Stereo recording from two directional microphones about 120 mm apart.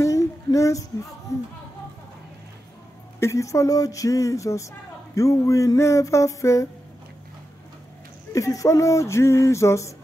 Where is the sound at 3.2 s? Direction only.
25° left (ahead or behind).